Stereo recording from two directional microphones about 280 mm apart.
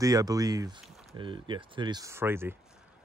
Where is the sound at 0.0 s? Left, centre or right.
Centre.